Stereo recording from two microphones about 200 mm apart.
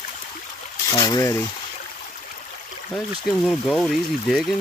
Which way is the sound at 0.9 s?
15° left (ahead or behind).